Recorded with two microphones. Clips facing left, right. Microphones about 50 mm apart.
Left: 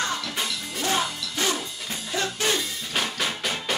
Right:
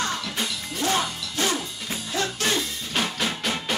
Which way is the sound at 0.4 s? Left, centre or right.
Centre.